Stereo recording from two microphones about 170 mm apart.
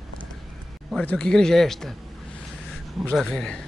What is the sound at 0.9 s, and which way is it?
A man's voice, 5° left (ahead or behind).